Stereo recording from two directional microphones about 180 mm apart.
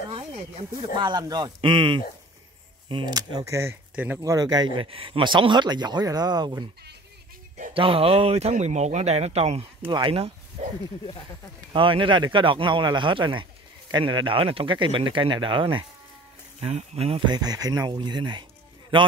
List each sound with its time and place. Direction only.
0.9 s speech: 25° right (ahead or behind)
4.2 s speech: 20° right (ahead or behind)
7.7 s speech: 30° right (ahead or behind)
11.7 s speech: 30° right (ahead or behind)